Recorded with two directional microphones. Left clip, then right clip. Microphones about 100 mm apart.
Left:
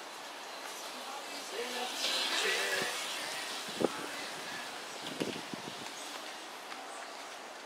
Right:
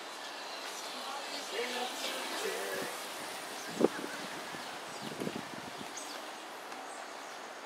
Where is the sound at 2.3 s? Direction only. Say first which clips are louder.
Left 5 dB; 15° right (ahead or behind).